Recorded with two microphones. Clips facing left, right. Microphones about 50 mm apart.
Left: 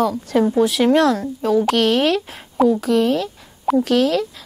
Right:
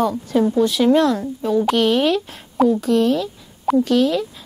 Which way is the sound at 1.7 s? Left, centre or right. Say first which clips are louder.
Even; left.